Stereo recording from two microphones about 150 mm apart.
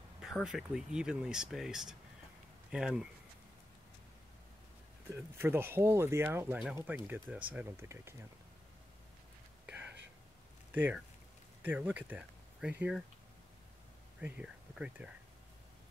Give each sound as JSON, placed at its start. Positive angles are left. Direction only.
{"t": 0.2, "sound": "speech", "side_deg": -5}
{"t": 5.4, "sound": "speech", "side_deg": -15}
{"t": 9.7, "sound": "whispering", "side_deg": -10}
{"t": 10.7, "sound": "speech", "side_deg": -10}
{"t": 14.2, "sound": "speech", "side_deg": -10}